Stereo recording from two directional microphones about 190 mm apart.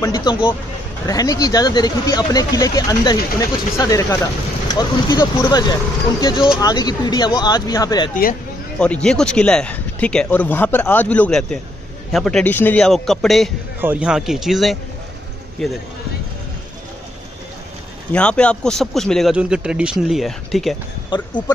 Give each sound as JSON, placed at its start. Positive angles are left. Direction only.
{"t": 0.0, "sound": "speech", "side_deg": 20}
{"t": 8.1, "sound": "speech", "side_deg": 45}
{"t": 8.7, "sound": "a man's voice", "side_deg": 5}
{"t": 18.1, "sound": "a man's voice", "side_deg": 5}
{"t": 21.1, "sound": "speech", "side_deg": 25}